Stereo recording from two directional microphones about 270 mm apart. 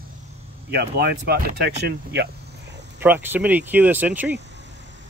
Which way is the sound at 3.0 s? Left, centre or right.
Centre.